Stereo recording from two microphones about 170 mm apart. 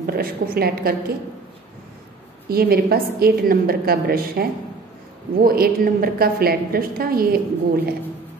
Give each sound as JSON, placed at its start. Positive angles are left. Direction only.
{"t": 0.0, "sound": "a woman's voice", "side_deg": -60}
{"t": 2.5, "sound": "a woman's voice", "side_deg": -65}